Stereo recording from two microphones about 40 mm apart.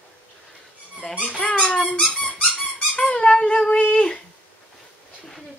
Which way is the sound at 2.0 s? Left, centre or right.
Centre.